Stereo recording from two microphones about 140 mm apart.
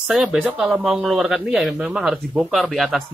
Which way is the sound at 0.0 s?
5° right (ahead or behind).